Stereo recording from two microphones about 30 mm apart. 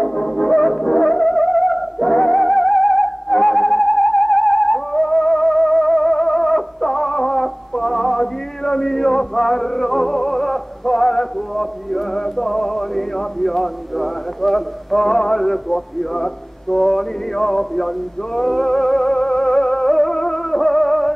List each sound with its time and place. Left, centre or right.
0.1 s music: centre
3.3 s theremin: centre
6.1 s music: centre
7.4 s music: centre
12.2 s male singing: centre
19.0 s music: centre